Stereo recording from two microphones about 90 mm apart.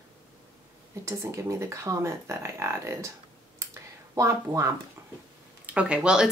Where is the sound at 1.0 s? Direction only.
35° right (ahead or behind).